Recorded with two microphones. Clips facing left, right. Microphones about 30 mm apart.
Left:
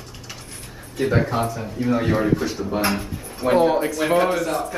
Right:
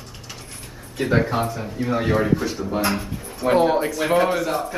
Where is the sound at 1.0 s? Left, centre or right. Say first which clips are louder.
Even; centre.